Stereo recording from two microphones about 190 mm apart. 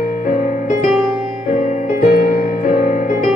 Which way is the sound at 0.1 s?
45° left (ahead or behind).